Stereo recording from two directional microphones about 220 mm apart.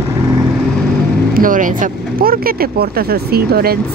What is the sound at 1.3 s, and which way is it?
Speech, 40° right (ahead or behind).